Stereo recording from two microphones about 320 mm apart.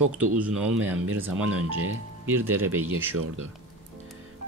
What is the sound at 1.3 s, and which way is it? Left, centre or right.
Speech, right.